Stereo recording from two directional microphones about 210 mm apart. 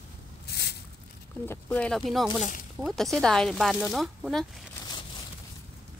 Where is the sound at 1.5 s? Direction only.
5° left (ahead or behind).